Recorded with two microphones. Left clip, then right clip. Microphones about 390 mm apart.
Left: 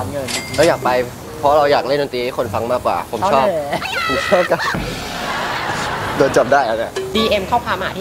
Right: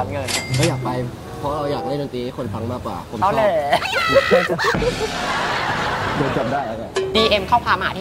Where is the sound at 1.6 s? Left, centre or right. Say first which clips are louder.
Left 8 dB; left.